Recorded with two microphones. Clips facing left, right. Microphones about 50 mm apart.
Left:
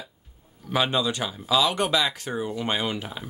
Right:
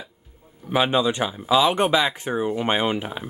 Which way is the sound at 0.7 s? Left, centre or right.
Centre.